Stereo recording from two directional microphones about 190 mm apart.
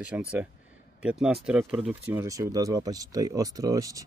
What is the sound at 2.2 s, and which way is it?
Speech, 15° right (ahead or behind).